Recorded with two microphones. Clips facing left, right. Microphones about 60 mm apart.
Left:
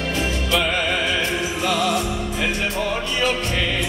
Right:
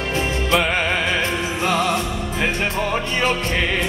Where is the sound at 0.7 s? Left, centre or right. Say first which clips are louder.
Right 1 dB; right.